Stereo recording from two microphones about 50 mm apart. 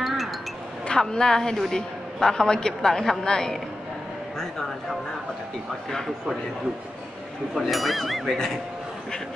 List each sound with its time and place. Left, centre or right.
0.0 s a sound: centre
0.8 s a woman's voice: centre
7.5 s speech: centre